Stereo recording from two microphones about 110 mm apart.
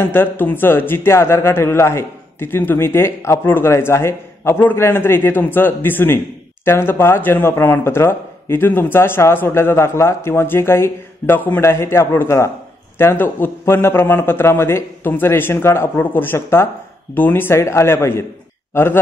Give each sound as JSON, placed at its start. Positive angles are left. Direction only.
{"t": 0.0, "sound": "a man's voice", "side_deg": 20}